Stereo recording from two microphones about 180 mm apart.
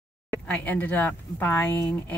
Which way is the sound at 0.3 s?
10° left (ahead or behind).